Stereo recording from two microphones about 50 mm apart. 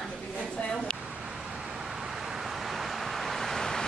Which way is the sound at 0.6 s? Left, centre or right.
Centre.